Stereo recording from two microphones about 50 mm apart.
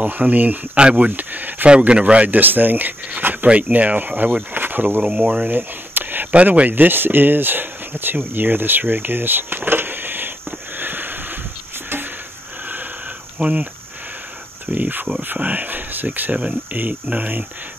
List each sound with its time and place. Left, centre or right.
0.0 s speech: right
0.7 s a sound: right
1.7 s speech: right
3.1 s dog: right
3.4 s speech: right
4.6 s insect: right
5.0 s speech: right
6.3 s speech: right
10.8 s a sound: right
13.4 s speech: right
14.7 s speech: right